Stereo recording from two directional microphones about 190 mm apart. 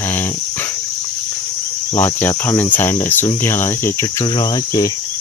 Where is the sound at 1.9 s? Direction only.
10° left (ahead or behind).